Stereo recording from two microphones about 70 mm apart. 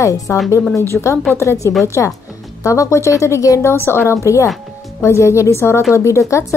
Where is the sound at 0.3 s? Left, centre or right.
Left.